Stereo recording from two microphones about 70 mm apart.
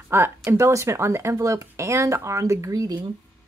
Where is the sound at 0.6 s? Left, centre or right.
Right.